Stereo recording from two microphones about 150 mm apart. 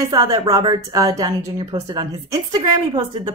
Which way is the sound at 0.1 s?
25° right (ahead or behind).